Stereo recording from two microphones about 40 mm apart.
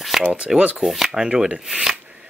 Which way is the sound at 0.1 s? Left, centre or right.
Centre.